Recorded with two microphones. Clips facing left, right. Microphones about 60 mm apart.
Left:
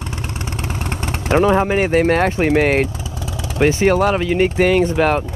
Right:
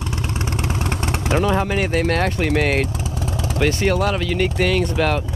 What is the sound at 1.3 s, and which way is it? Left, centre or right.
Speech, left.